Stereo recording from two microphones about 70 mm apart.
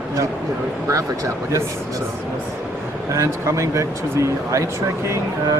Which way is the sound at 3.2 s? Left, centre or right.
Right.